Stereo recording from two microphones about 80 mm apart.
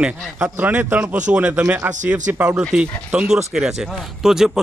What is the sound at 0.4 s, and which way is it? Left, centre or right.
Speech, right.